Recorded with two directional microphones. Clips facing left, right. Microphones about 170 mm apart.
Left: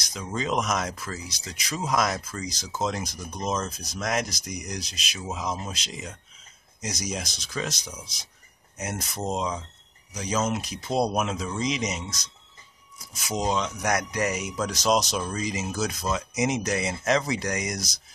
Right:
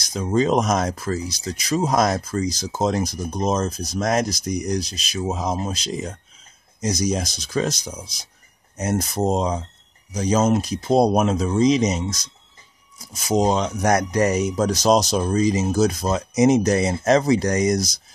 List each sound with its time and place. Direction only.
0.1 s speech: 40° right (ahead or behind)
13.2 s speech: 35° right (ahead or behind)